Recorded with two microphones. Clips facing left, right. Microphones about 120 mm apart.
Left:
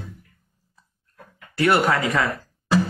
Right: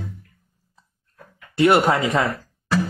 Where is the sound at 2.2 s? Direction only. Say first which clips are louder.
Even; 20° left (ahead or behind).